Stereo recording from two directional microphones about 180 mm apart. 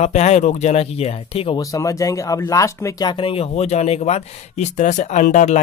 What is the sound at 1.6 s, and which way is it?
Speech, 20° left (ahead or behind).